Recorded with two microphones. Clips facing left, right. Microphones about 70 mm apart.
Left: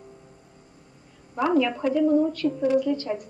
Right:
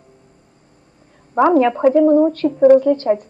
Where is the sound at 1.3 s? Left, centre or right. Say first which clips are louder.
Right 9 dB; right.